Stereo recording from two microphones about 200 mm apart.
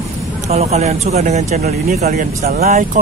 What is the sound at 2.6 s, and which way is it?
Speech, 45° right (ahead or behind).